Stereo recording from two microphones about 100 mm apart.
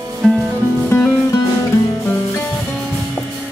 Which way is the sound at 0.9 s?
30° left (ahead or behind).